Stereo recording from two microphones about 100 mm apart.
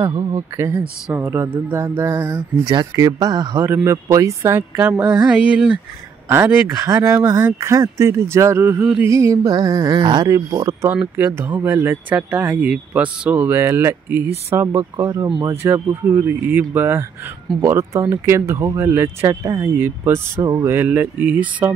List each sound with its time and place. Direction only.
0.3 s speech: 30° right (ahead or behind)
2.3 s speech: 45° right (ahead or behind)
3.0 s music: 35° right (ahead or behind)
3.6 s speech: 25° right (ahead or behind)
6.2 s speech: 25° right (ahead or behind)
9.0 s music: 30° right (ahead or behind); by 10.3 s 50° right (ahead or behind)
10.3 s music: 35° right (ahead or behind)
11.1 s speech: 20° right (ahead or behind)